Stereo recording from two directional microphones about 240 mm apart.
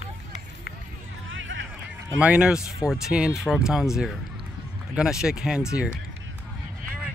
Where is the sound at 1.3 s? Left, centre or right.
Right.